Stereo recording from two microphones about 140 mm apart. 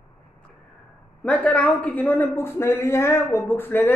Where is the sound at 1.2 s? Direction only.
10° left (ahead or behind).